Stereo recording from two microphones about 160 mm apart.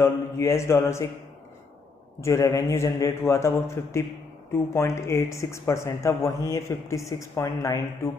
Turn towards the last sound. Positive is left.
turn(degrees=20)  # may be behind; listen again after turning